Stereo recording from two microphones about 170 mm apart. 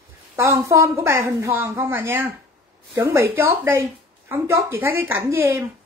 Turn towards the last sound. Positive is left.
turn(degrees=-10)  # may be behind; listen again after turning